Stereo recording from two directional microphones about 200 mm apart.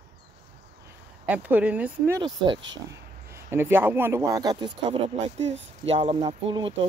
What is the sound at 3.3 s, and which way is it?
Speech, 10° right (ahead or behind).